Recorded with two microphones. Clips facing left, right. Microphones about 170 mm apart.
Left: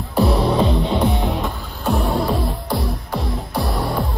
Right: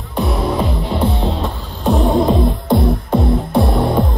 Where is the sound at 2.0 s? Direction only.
20° right (ahead or behind).